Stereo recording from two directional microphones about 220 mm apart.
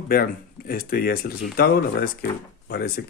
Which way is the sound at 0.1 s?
40° left (ahead or behind).